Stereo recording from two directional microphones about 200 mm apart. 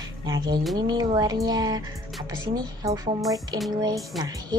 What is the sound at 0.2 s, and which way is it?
A woman's voice, 20° right (ahead or behind).